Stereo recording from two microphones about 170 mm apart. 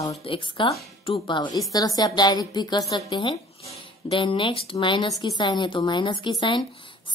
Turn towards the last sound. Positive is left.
turn(degrees=30)  # may be behind; listen again after turning